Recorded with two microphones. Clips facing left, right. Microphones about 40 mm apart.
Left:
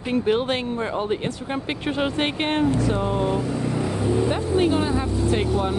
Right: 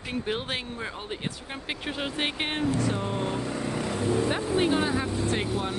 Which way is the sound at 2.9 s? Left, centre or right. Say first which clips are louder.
Left 7 dB; left.